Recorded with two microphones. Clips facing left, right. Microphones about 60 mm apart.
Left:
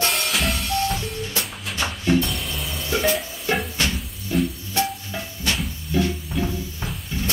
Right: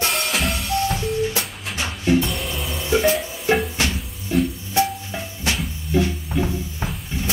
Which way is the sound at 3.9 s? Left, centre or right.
Centre.